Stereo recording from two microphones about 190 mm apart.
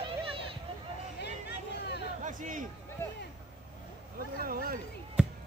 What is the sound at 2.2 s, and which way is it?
Hubbub, 45° right (ahead or behind).